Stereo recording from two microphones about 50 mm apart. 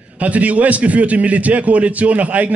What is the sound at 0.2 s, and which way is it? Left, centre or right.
A man's voice, right.